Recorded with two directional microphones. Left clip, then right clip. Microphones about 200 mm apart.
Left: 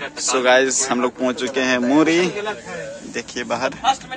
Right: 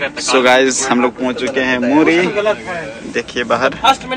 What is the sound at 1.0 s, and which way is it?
A man's voice, 45° left (ahead or behind).